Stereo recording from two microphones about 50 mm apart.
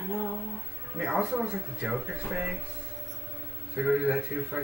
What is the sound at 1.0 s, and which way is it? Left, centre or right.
Speech, centre.